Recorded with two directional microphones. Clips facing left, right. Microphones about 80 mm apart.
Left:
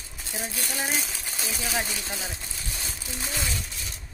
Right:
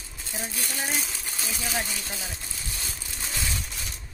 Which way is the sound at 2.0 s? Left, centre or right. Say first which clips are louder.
Left 2 dB; left.